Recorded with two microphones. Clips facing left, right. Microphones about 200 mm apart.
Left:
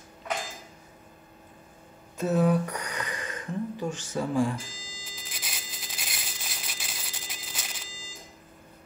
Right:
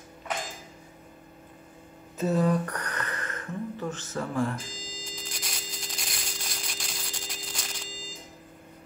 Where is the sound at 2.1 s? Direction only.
Centre (ahead or behind).